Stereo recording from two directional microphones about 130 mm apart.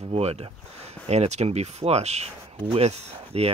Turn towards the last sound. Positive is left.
turn(degrees=-50)  # may be behind; listen again after turning